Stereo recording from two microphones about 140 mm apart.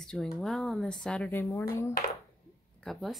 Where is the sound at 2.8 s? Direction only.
5° left (ahead or behind).